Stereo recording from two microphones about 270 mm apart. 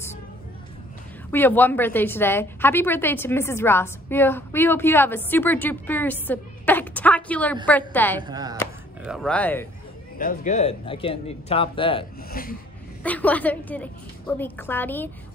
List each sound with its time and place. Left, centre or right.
1.3 s a woman's voice: centre
8.2 s speech: centre
9.0 s a woman's voice: centre
10.1 s speech: left
12.3 s rub: left
13.0 s a woman's voice: centre